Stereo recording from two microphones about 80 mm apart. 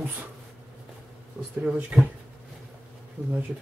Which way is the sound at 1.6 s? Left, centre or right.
Centre.